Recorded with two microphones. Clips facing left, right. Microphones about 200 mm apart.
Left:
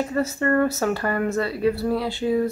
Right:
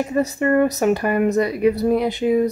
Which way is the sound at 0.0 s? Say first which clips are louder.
Right 3 dB; 15° right (ahead or behind).